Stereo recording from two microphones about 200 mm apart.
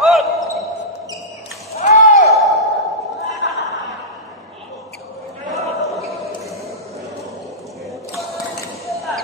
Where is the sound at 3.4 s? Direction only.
65° left (ahead or behind).